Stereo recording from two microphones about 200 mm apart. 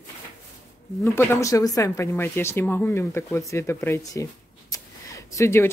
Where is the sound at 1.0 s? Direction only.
10° left (ahead or behind).